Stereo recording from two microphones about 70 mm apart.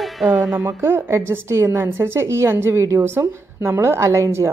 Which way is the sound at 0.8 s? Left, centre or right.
Right.